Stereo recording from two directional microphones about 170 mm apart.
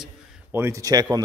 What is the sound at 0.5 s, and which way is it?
Speech, 15° right (ahead or behind).